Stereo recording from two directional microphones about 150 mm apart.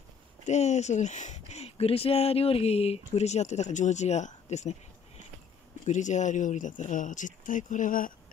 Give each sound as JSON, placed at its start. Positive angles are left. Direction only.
{"t": 0.5, "sound": "speech", "side_deg": 50}
{"t": 5.9, "sound": "speech", "side_deg": 55}